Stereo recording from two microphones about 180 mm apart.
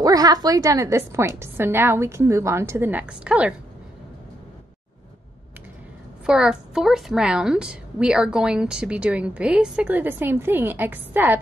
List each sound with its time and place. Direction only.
0.0 s a woman's voice: 20° right (ahead or behind)
6.2 s a woman's voice: 5° right (ahead or behind)